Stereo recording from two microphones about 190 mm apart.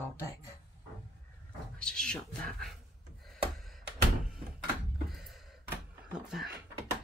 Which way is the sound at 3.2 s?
Centre (ahead or behind).